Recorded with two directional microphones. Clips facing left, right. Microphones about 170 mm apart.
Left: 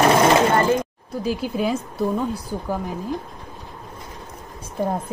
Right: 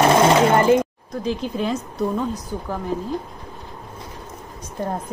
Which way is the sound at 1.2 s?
10° left (ahead or behind).